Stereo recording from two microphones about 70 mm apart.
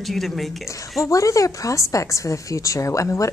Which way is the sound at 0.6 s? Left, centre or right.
Left.